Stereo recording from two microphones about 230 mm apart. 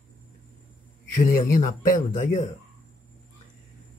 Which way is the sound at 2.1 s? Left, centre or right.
Left.